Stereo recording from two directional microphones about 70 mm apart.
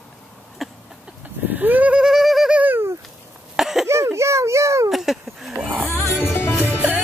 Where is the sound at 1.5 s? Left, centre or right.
Right.